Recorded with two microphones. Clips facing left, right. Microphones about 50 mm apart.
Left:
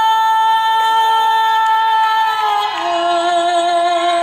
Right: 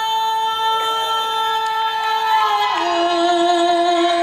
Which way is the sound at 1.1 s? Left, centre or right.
Centre.